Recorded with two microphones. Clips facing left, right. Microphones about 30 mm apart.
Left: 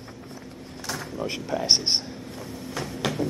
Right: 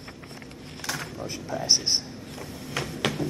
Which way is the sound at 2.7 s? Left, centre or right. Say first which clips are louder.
Right 1 dB; right.